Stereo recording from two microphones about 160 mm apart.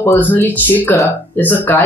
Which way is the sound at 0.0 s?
15° left (ahead or behind).